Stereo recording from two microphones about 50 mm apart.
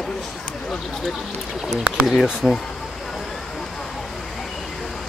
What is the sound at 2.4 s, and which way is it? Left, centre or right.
Speech, centre.